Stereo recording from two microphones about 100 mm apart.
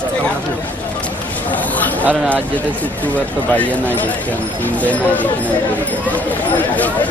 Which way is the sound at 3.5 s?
15° left (ahead or behind).